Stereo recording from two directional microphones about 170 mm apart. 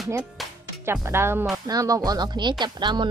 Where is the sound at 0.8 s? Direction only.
15° right (ahead or behind).